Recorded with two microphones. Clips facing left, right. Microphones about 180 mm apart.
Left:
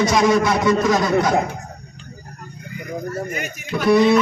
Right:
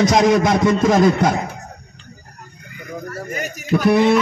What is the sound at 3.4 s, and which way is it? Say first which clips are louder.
Speech: right 5 dB; 45° right (ahead or behind).